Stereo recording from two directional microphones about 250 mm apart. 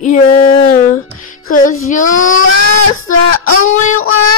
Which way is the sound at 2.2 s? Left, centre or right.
Left.